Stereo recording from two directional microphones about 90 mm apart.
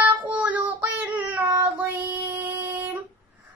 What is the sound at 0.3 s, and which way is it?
Child singing, 15° right (ahead or behind).